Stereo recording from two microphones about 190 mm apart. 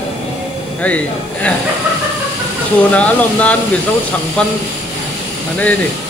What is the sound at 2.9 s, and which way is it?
Speech, 5° left (ahead or behind).